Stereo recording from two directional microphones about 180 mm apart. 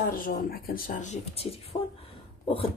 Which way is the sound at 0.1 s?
55° left (ahead or behind).